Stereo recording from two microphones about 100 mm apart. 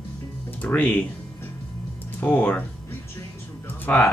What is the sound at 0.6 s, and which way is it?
Speech, 15° left (ahead or behind).